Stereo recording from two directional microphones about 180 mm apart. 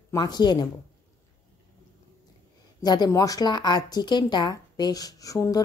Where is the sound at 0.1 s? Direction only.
25° left (ahead or behind).